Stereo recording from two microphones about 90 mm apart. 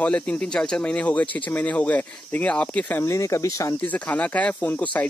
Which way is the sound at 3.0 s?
35° left (ahead or behind).